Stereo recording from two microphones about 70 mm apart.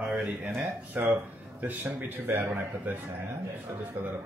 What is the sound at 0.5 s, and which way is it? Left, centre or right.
A man's voice, right.